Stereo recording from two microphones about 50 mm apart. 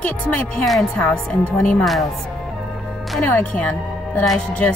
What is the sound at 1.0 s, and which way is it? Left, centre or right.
Speech, left.